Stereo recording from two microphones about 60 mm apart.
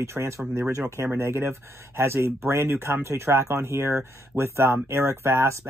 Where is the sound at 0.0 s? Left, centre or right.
Right.